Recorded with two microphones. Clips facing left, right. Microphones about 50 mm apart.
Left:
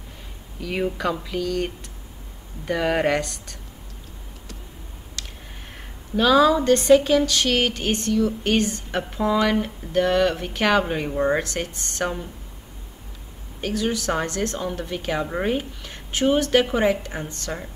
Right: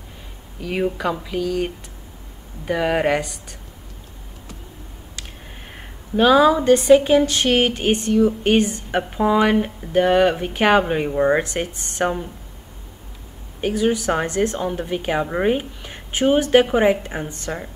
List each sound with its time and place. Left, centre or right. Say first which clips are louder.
0.6 s speech: right 3 dB; centre
5.8 s a woman's voice: right 4 dB; centre
13.6 s a woman's voice: right 5 dB; centre